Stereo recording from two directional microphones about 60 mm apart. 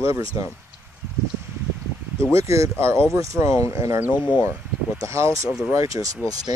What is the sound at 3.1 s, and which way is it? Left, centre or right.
Speech, right.